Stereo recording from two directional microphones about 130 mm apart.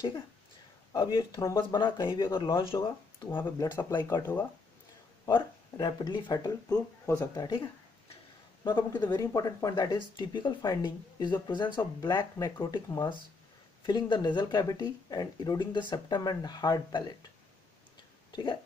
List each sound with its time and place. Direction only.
0.9 s speech: 35° left (ahead or behind)
5.3 s speech: 35° left (ahead or behind)
8.6 s speech: 35° left (ahead or behind)
18.3 s speech: 40° left (ahead or behind)